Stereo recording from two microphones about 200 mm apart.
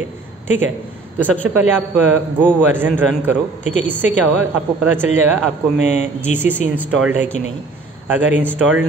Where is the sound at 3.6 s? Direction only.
35° left (ahead or behind).